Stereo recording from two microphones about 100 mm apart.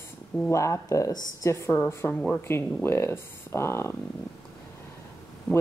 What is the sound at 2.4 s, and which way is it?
Speech, 25° left (ahead or behind).